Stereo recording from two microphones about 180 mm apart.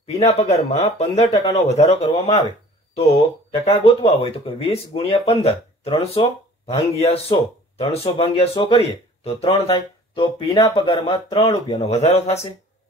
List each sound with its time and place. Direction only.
0.0 s speech: 35° left (ahead or behind)
3.6 s speech: 30° left (ahead or behind)